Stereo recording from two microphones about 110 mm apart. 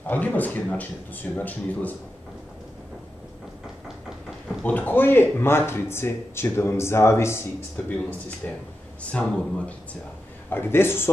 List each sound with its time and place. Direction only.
0.0 s speech: 15° left (ahead or behind)
4.6 s speech: 15° left (ahead or behind)
8.4 s speech: 15° left (ahead or behind)
10.5 s speech: 20° left (ahead or behind)